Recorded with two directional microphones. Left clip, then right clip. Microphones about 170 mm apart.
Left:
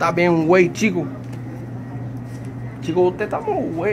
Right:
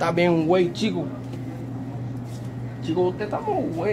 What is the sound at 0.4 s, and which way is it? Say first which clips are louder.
Speech: left 5 dB; 15° left (ahead or behind).